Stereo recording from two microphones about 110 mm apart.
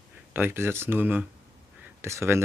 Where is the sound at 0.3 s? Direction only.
20° right (ahead or behind).